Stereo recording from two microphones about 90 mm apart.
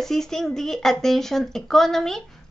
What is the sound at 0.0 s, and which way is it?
Speech, 5° left (ahead or behind).